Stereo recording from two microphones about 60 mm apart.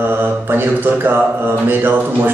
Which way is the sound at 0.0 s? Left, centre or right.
Right.